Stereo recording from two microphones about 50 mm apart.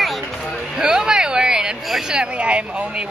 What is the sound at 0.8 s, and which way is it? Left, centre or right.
Speech, centre.